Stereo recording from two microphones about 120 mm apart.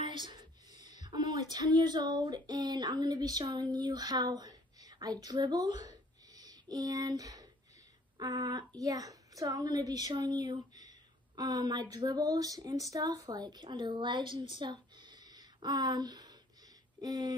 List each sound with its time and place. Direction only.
0.3 s a woman's voice: 35° right (ahead or behind)